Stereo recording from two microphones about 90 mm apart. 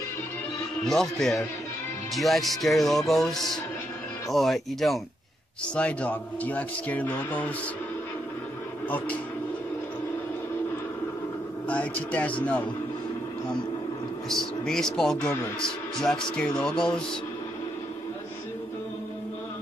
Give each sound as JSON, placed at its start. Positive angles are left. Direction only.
{"t": 0.8, "sound": "speech", "side_deg": 5}
{"t": 5.8, "sound": "speech", "side_deg": 15}
{"t": 8.8, "sound": "speech", "side_deg": 15}
{"t": 11.6, "sound": "speech", "side_deg": 15}
{"t": 14.3, "sound": "a man's voice", "side_deg": 5}